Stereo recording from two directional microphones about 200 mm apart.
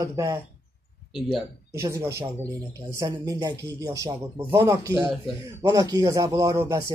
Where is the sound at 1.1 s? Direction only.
Centre (ahead or behind).